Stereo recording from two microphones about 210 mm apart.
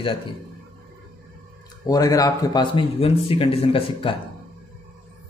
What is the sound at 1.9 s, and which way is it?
A man's voice, 15° left (ahead or behind).